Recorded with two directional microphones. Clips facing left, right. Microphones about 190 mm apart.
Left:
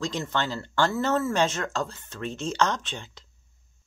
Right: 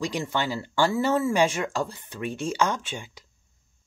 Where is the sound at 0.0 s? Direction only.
10° right (ahead or behind).